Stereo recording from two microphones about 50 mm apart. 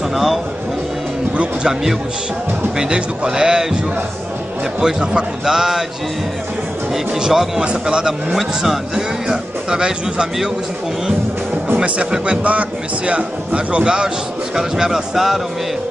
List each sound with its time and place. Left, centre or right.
0.1 s speech: centre
1.3 s speech: right
2.8 s speech: centre
4.7 s speech: centre
7.2 s speech: centre
11.7 s speech: right; by 15.4 s centre